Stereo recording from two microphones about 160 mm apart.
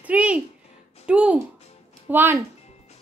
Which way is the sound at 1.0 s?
5° right (ahead or behind).